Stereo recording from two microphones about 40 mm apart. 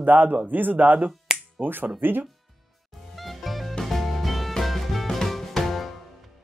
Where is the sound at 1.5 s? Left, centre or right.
Right.